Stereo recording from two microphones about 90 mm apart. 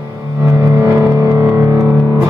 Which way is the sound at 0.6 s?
35° right (ahead or behind).